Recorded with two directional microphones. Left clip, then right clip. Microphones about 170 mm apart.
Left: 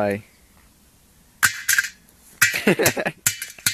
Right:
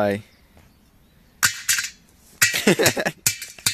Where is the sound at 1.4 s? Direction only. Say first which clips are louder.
Left 2 dB; centre (ahead or behind).